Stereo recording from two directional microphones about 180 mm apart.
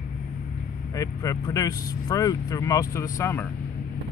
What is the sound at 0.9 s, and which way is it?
Speech, 20° left (ahead or behind).